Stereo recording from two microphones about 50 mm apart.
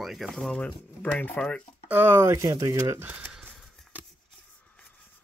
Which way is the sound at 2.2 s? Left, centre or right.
Right.